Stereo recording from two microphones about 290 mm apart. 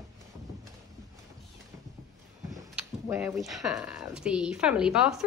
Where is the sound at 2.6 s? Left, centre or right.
Centre.